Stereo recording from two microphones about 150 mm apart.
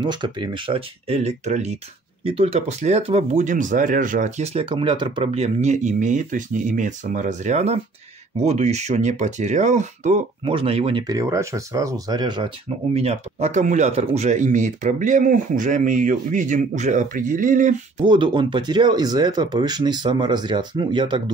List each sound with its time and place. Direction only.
0.0 s speech: 30° right (ahead or behind); by 1.8 s 50° right (ahead or behind)
2.2 s speech: 40° right (ahead or behind)
10.4 s speech: 35° right (ahead or behind)
11.1 s speech: 20° right (ahead or behind); by 18.0 s 55° right (ahead or behind)
18.0 s speech: 30° right (ahead or behind)